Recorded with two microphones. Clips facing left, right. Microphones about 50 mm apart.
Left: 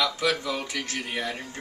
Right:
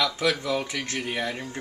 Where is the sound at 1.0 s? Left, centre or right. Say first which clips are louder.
Right 2 dB; centre.